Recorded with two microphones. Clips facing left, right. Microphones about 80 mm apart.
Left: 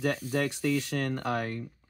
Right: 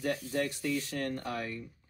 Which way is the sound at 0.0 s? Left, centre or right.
Left.